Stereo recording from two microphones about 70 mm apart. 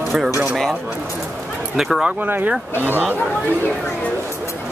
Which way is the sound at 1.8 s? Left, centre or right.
Centre.